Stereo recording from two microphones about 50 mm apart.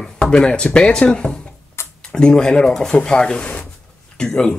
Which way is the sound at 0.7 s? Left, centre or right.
Left.